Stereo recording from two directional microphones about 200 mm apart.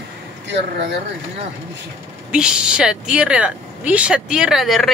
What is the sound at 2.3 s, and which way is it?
Speech, 5° right (ahead or behind).